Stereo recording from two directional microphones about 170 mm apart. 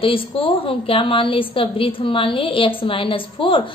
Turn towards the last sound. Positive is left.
turn(degrees=30)  # may be behind; listen again after turning